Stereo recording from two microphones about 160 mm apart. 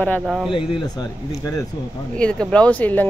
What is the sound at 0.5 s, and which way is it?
Speech, 30° left (ahead or behind).